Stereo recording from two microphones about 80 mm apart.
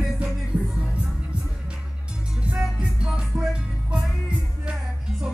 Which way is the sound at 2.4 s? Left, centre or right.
Centre.